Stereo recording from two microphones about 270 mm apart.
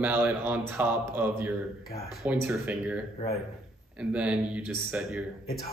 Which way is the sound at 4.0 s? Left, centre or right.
Centre.